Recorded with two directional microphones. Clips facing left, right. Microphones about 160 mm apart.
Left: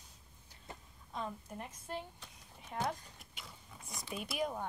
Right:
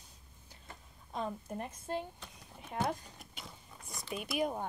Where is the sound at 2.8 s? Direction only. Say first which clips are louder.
Right 3 dB; 35° right (ahead or behind).